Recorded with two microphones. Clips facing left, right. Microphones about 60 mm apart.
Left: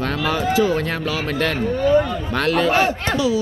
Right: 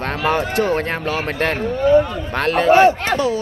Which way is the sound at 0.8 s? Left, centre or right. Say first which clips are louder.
Right 1 dB; right.